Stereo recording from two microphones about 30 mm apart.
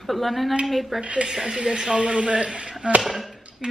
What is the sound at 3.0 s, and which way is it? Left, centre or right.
Speech, centre.